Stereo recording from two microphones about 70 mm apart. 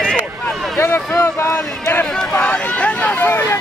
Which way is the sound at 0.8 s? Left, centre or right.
Left.